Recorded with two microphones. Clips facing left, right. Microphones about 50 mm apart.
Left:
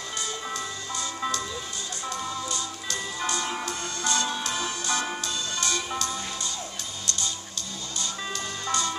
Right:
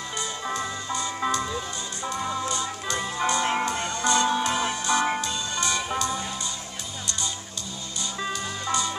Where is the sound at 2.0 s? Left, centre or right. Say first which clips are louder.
Right 4 dB; right.